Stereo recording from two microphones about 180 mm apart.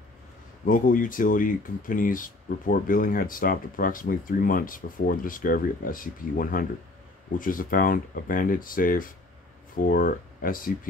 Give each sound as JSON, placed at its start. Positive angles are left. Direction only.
{"t": 0.7, "sound": "speech", "side_deg": 50}